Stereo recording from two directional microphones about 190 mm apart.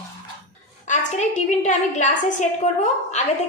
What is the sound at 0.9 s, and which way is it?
A woman's voice, 40° left (ahead or behind).